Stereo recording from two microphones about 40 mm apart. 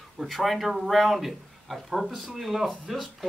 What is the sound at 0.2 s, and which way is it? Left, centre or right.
Speech, centre.